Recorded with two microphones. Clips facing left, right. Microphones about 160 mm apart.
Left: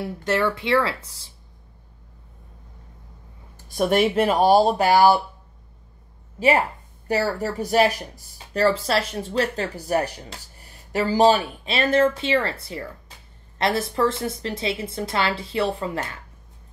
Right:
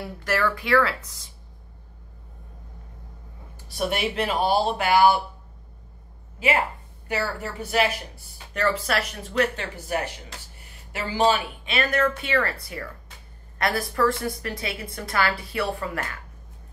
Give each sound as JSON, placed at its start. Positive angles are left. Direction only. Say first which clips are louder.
{"t": 0.2, "sound": "a woman's voice", "louder": "left 2 dB", "side_deg": 25}
{"t": 3.5, "sound": "speech", "louder": "left 7 dB", "side_deg": 45}
{"t": 7.1, "sound": "a woman's voice", "louder": "left 6 dB", "side_deg": 40}